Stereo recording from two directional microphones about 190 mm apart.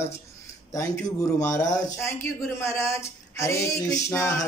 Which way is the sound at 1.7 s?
15° left (ahead or behind).